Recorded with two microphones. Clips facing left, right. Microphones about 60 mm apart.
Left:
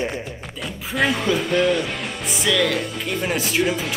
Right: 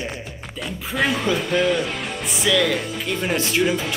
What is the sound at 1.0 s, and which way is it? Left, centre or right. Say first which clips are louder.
Speech: left 1 dB; centre.